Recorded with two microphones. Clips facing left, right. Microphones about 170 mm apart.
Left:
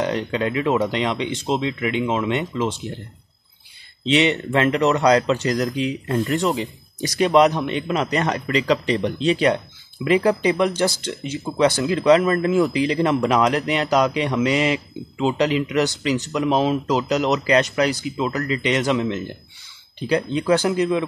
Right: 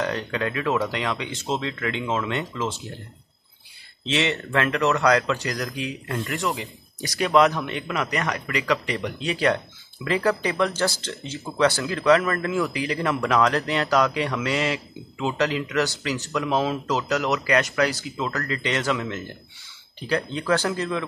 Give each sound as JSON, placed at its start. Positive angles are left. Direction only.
{"t": 0.0, "sound": "speech", "side_deg": 20}
{"t": 4.1, "sound": "speech", "side_deg": 20}